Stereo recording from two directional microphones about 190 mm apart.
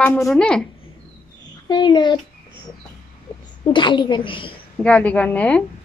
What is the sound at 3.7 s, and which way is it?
Speech, 25° left (ahead or behind).